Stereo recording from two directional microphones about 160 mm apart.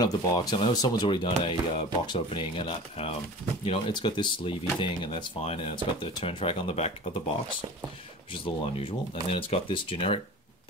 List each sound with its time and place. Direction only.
0.0 s speech: 25° left (ahead or behind)
8.3 s speech: 35° left (ahead or behind)